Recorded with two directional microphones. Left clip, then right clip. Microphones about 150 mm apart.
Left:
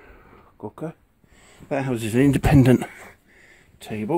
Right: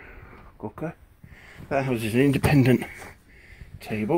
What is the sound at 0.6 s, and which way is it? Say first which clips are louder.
Speech: left 1 dB; 15° left (ahead or behind).